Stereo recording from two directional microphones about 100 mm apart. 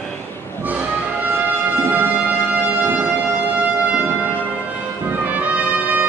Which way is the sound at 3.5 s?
15° right (ahead or behind).